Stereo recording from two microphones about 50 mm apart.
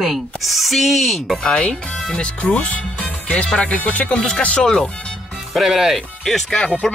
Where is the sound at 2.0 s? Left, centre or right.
Left.